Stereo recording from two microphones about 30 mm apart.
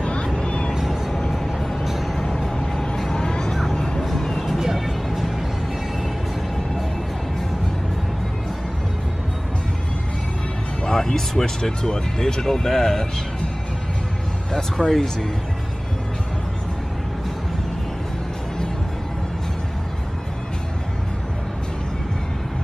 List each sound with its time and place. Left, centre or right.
0.0 s vehicle: left
0.8 s vehicle: centre
2.1 s music: centre
3.1 s vehicle: left
3.7 s music: left
4.0 s vehicle: centre
4.7 s music: centre
10.9 s music: centre
11.8 s speech: left
14.5 s speech: centre